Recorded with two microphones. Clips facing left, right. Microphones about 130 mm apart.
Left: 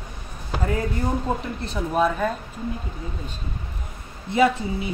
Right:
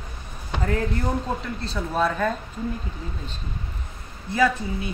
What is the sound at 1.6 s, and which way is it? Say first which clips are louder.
Speech: left 2 dB; 15° left (ahead or behind).